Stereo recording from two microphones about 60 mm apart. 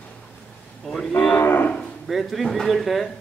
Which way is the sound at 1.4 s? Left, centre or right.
Left.